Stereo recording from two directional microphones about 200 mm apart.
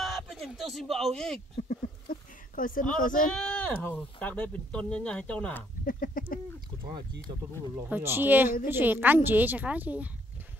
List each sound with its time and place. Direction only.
0.0 s a sound: centre (ahead or behind)
1.6 s a sound: 45° left (ahead or behind)
3.0 s speech: 40° left (ahead or behind)
3.3 s speech: 5° left (ahead or behind)
5.9 s chicken: 45° left (ahead or behind)
6.8 s speech: 25° right (ahead or behind)
7.7 s a woman's voice: 10° right (ahead or behind)